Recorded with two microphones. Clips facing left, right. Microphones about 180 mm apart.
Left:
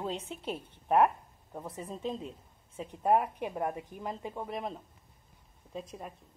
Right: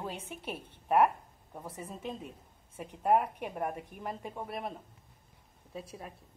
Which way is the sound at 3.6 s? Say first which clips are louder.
Left 1 dB; 10° right (ahead or behind).